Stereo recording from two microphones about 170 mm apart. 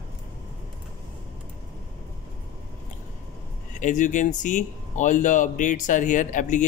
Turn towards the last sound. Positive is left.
turn(degrees=50)  # may be behind; listen again after turning